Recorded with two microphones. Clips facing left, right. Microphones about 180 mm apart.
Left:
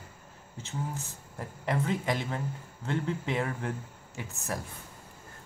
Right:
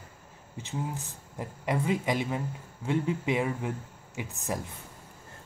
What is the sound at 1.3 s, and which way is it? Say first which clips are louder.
Speech: right 1 dB; 10° right (ahead or behind).